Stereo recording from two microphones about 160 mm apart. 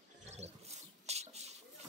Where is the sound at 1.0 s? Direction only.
40° right (ahead or behind).